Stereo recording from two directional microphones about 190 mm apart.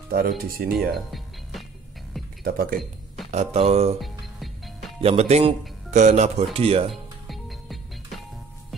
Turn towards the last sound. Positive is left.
turn(degrees=0)  # may be behind; listen again after turning